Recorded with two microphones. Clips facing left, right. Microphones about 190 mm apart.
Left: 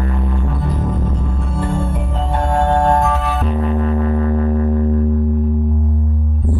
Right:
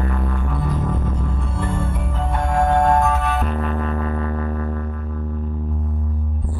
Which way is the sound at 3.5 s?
20° left (ahead or behind).